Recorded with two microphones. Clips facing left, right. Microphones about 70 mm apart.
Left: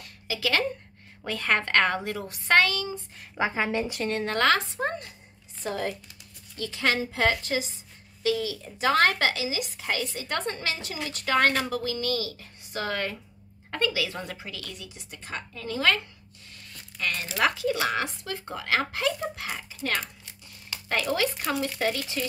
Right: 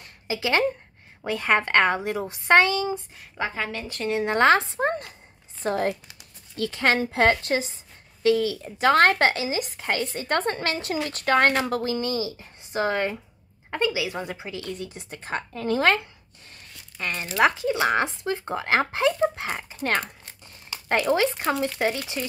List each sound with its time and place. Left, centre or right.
0.0 s a sound: right
1.2 s speech: centre
3.2 s a woman's voice: centre
4.2 s a woman's voice: right
11.9 s a woman's voice: right
17.0 s speech: right
20.7 s speech: right